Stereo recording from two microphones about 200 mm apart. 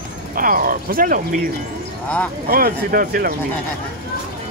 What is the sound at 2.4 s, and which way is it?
Speech, 50° right (ahead or behind).